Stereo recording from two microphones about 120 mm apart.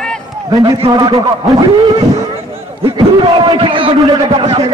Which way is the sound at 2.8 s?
45° right (ahead or behind).